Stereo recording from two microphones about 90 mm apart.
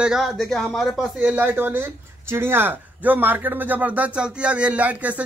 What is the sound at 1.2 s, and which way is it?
Speech, 20° right (ahead or behind).